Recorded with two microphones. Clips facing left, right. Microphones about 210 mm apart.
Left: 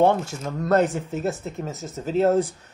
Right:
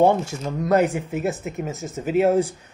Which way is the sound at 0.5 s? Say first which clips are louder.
Right 1 dB; 10° right (ahead or behind).